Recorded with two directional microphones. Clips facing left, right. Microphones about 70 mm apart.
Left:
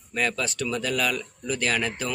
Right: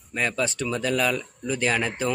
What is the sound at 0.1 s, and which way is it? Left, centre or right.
Speech, right.